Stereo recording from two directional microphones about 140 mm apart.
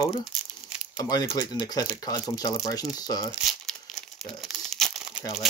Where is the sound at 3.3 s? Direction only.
Centre (ahead or behind).